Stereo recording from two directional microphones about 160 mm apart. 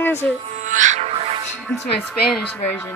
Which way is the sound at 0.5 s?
50° right (ahead or behind).